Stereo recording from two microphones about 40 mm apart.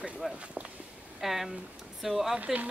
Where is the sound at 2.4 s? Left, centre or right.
Right.